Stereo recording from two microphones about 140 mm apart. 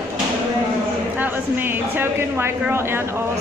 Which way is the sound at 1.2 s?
15° right (ahead or behind).